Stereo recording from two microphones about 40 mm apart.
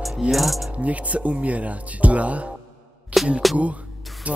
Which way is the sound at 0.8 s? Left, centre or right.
Right.